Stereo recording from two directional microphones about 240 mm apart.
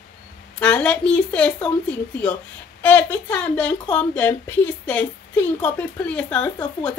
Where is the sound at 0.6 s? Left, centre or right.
Centre.